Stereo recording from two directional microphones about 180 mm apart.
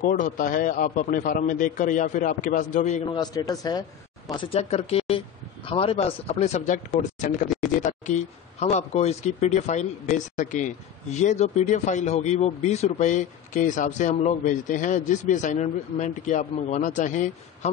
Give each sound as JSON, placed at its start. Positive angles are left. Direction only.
{"t": 0.0, "sound": "a man's voice", "side_deg": 45}
{"t": 3.1, "sound": "a man's voice", "side_deg": 20}